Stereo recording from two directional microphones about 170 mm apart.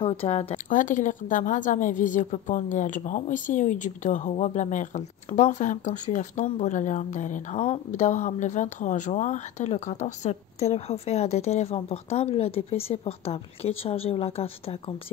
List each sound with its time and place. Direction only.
0.0 s speech: 35° left (ahead or behind)
0.7 s a woman's voice: 50° left (ahead or behind); by 15.0 s 35° left (ahead or behind)